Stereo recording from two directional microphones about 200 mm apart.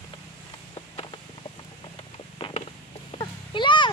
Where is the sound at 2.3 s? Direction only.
25° left (ahead or behind).